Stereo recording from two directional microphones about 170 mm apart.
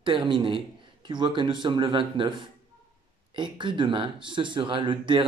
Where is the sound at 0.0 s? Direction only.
30° right (ahead or behind).